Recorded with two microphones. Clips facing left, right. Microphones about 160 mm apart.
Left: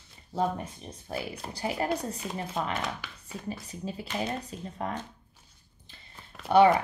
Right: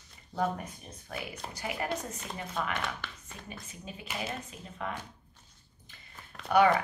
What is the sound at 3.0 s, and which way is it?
Speech, 5° left (ahead or behind).